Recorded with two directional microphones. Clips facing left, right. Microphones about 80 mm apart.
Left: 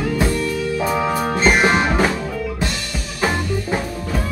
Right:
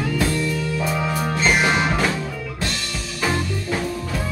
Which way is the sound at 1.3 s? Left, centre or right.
Left.